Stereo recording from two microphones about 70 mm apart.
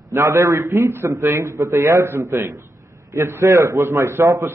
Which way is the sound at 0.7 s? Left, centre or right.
Right.